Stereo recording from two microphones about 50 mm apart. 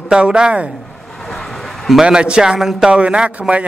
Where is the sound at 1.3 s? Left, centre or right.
Centre.